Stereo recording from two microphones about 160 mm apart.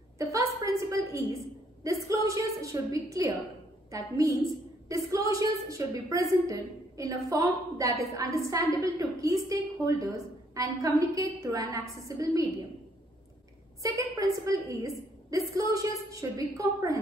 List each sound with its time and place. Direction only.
0.2 s a sound: 20° right (ahead or behind)
3.9 s a woman's voice: 20° right (ahead or behind)
13.8 s a woman's voice: 20° right (ahead or behind)